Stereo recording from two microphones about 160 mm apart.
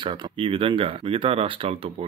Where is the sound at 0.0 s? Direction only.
30° right (ahead or behind).